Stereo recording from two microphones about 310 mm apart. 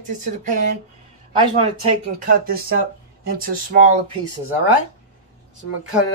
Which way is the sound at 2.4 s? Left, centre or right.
Right.